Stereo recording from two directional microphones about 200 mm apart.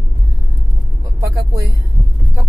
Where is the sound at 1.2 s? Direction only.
15° right (ahead or behind).